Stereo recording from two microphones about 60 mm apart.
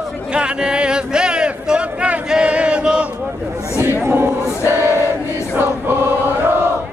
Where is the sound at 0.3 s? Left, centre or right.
Centre.